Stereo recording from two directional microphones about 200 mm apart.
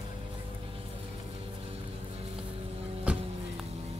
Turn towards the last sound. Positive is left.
turn(degrees=-5)  # may be behind; listen again after turning